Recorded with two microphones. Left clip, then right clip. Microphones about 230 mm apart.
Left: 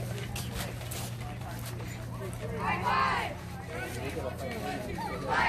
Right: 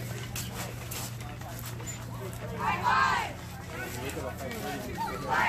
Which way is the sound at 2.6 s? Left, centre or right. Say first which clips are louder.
Right 3 dB; right.